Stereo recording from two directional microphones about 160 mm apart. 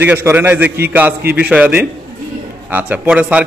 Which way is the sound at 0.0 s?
10° right (ahead or behind).